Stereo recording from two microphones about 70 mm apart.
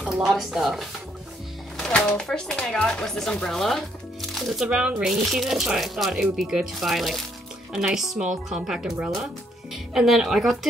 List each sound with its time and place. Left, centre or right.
0.0 s a sound: centre
0.3 s speech: centre
1.8 s speech: centre
4.6 s speech: centre
5.1 s speech: centre